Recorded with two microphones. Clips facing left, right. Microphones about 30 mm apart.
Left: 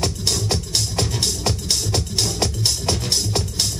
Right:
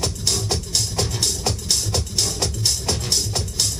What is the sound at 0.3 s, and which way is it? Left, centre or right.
Music, centre.